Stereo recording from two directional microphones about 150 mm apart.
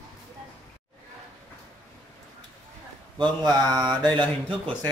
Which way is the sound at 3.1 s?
30° right (ahead or behind).